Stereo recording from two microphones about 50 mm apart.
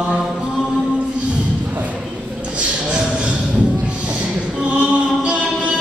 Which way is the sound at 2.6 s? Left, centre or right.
Right.